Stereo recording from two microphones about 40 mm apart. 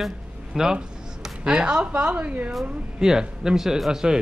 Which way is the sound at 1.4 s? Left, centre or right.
Right.